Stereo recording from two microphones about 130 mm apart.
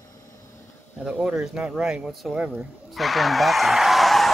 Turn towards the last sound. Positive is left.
turn(degrees=0)  # may be behind; listen again after turning